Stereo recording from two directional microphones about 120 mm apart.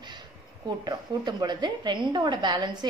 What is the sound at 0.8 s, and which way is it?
A woman's voice, 35° right (ahead or behind).